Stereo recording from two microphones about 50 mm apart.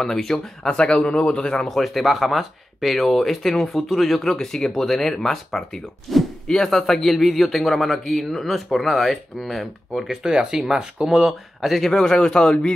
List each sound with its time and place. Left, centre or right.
0.0 s speech: centre
0.7 s a man's voice: centre
1.7 s speech: centre
4.2 s speech: centre
10.2 s speech: centre